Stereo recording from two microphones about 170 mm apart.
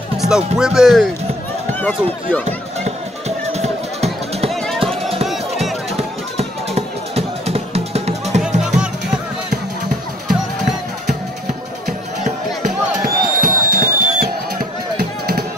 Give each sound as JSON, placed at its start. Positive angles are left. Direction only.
{"t": 0.2, "sound": "speech", "side_deg": -5}
{"t": 2.8, "sound": "music", "side_deg": -40}
{"t": 8.5, "sound": "music", "side_deg": -5}
{"t": 10.2, "sound": "music", "side_deg": 0}
{"t": 13.0, "sound": "music", "side_deg": -60}